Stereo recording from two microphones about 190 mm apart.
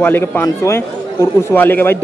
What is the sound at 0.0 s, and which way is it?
A man's voice, 10° left (ahead or behind).